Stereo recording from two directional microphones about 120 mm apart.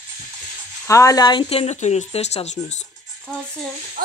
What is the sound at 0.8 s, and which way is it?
Speech, 25° left (ahead or behind).